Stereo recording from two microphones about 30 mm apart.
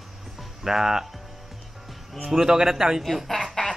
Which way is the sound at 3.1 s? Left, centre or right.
Centre.